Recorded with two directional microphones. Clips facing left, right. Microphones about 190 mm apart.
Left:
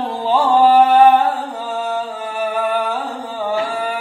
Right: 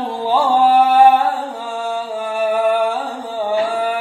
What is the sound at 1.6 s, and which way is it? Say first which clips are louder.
Music: left 1 dB; 10° right (ahead or behind).